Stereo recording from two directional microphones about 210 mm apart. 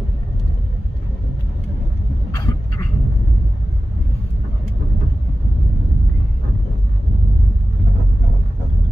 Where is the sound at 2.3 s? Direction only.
15° left (ahead or behind).